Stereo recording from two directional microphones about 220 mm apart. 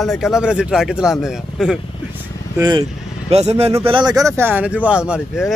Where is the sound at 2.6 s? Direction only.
20° right (ahead or behind).